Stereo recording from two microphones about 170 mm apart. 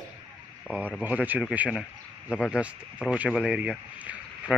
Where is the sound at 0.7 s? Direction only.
10° right (ahead or behind).